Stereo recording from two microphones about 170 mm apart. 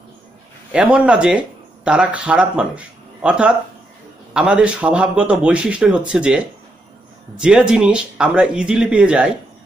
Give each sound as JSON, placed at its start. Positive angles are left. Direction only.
{"t": 0.7, "sound": "a man's voice", "side_deg": -5}